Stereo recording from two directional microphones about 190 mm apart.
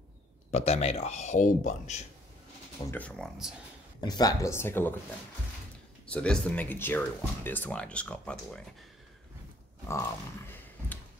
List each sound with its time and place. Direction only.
0.5 s speech: 35° left (ahead or behind)
2.9 s speech: 5° left (ahead or behind)
4.0 s speech: 20° left (ahead or behind)
6.0 s speech: 5° left (ahead or behind)
9.8 s a sound: 15° left (ahead or behind)